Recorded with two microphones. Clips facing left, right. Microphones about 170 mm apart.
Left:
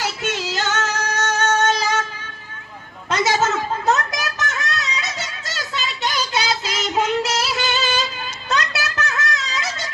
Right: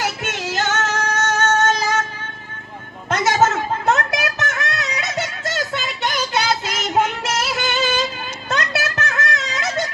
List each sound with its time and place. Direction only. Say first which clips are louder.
0.0 s female singing: even; 50° right (ahead or behind)
3.1 s a sound: right 2 dB; 50° right (ahead or behind)
4.5 s music: right 2 dB; 50° right (ahead or behind)